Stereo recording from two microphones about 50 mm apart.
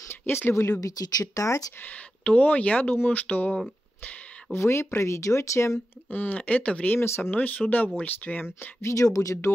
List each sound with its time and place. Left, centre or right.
0.1 s speech: left
1.8 s speech: left
4.5 s speech: left
6.0 s speech: left
7.0 s speech: left
7.3 s speech: left
8.8 s speech: left